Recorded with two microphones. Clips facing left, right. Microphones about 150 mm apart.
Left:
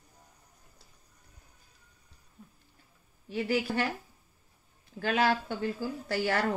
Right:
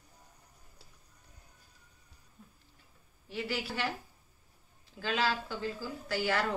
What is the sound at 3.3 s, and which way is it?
Speech, 45° left (ahead or behind).